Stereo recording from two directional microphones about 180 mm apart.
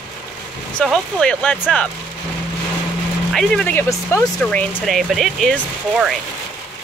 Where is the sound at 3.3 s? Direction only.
5° left (ahead or behind).